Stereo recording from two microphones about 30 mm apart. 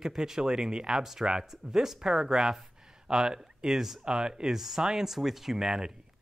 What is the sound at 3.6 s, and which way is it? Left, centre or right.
Speech, centre.